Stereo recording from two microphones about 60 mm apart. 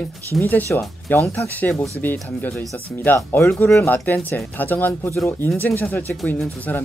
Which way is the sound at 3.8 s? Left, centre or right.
Left.